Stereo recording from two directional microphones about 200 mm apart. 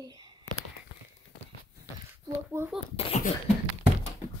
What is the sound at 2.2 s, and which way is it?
Speech, 15° right (ahead or behind).